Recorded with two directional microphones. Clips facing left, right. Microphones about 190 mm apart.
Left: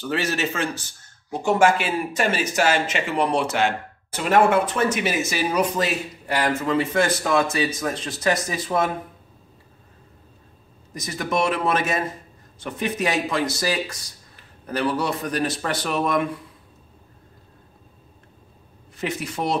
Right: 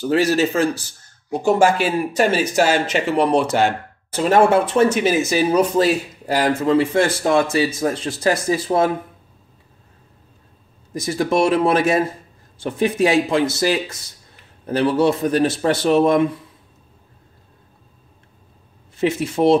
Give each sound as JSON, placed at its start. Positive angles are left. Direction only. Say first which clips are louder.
{"t": 0.0, "sound": "speech", "louder": "right 8 dB", "side_deg": -35}
{"t": 10.9, "sound": "speech", "louder": "right 7 dB", "side_deg": -30}
{"t": 18.9, "sound": "speech", "louder": "right 9 dB", "side_deg": -25}